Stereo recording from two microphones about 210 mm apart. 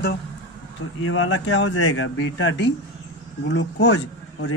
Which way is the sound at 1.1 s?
65° left (ahead or behind).